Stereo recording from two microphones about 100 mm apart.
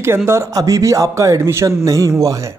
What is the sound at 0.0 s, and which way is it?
A man's voice, 25° right (ahead or behind).